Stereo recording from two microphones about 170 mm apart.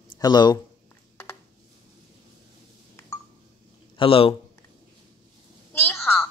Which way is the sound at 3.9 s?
30° left (ahead or behind).